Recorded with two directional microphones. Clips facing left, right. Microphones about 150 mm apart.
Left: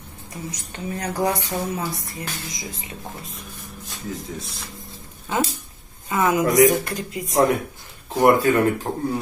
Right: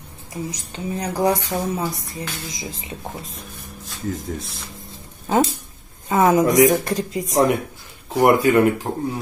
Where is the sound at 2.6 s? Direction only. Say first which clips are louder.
Right 3 dB; 25° right (ahead or behind).